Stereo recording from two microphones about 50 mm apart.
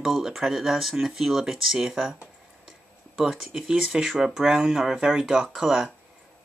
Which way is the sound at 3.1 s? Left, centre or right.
Centre.